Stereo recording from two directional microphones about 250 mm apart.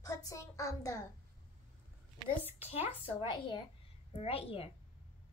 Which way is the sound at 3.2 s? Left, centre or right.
Centre.